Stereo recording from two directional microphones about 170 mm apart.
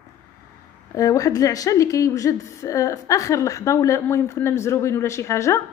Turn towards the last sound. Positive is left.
turn(degrees=15)  # may be behind; listen again after turning